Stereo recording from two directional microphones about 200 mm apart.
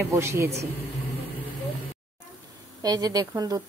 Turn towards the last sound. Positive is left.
turn(degrees=-15)  # may be behind; listen again after turning